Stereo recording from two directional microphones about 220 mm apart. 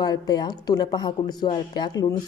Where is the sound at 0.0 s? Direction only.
20° left (ahead or behind).